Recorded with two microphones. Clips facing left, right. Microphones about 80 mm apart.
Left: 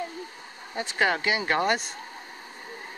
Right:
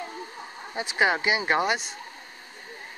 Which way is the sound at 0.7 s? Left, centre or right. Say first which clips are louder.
Right 1 dB; centre.